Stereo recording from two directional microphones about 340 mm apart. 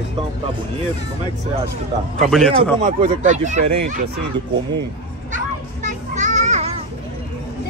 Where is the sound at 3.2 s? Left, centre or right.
Right.